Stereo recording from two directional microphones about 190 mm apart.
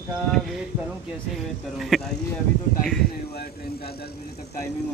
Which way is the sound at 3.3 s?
55° left (ahead or behind).